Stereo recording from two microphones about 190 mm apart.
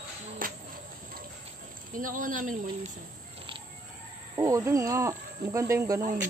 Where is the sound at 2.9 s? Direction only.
25° right (ahead or behind).